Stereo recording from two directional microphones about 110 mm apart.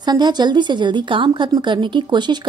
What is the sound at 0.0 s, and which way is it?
A woman's voice, 40° right (ahead or behind).